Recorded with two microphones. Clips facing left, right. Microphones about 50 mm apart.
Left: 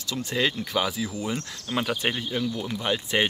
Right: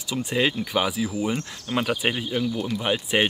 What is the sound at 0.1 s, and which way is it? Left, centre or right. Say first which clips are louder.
Speech: right 3 dB; centre.